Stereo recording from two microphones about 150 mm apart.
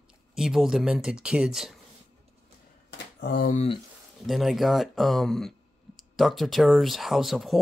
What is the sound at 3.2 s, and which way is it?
Speech, 80° left.